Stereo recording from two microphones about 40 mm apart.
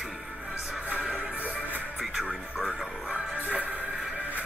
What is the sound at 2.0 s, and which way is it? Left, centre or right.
Music, centre.